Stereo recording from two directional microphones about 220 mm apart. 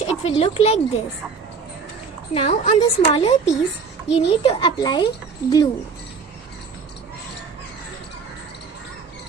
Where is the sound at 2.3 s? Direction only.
30° left (ahead or behind).